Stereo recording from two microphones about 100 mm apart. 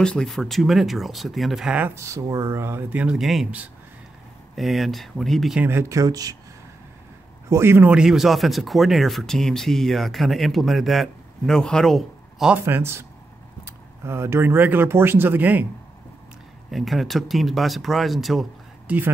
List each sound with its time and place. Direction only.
0.0 s speech: 5° left (ahead or behind)
2.0 s speech: 30° right (ahead or behind)
2.9 s speech: 15° right (ahead or behind)
3.2 s speech: centre (ahead or behind)
4.6 s speech: centre (ahead or behind)
5.6 s speech: 25° right (ahead or behind)
7.4 s a man's voice: 25° right (ahead or behind)
7.9 s speech: 5° right (ahead or behind)
12.5 s a man's voice: 20° right (ahead or behind)
16.7 s speech: centre (ahead or behind)
18.9 s speech: 15° right (ahead or behind)